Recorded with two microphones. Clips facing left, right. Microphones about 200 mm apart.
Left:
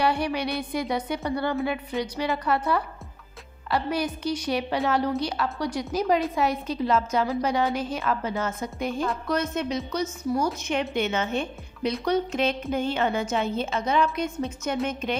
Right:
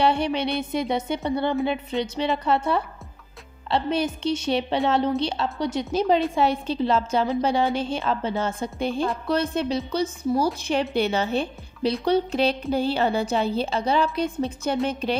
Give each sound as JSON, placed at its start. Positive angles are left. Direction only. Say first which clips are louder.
{"t": 0.0, "sound": "music", "louder": "right 3 dB", "side_deg": -25}
{"t": 9.3, "sound": "a woman's voice", "louder": "right 4 dB", "side_deg": -30}